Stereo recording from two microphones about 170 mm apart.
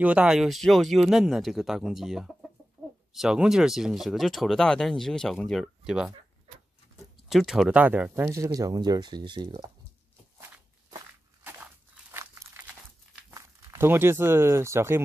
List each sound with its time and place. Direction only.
0.0 s speech: 5° right (ahead or behind)
7.2 s speech: centre (ahead or behind); by 9.6 s 30° right (ahead or behind)
12.1 s crumpling: 15° right (ahead or behind)
13.3 s speech: 15° right (ahead or behind)